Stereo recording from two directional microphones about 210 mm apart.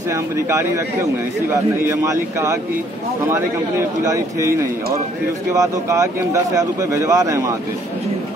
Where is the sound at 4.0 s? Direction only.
15° right (ahead or behind).